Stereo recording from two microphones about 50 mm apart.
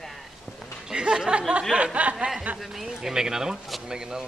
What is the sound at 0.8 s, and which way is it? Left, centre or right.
Speech, centre.